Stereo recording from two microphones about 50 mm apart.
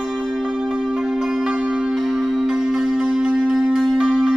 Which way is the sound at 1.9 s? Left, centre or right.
Centre.